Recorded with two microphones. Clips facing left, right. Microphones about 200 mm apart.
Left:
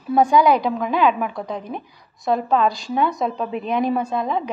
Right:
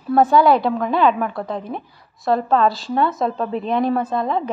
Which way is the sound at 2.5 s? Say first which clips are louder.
Right 2 dB; 15° left (ahead or behind).